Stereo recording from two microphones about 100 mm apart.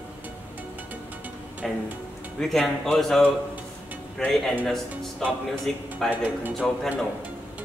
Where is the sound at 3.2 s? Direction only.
15° right (ahead or behind).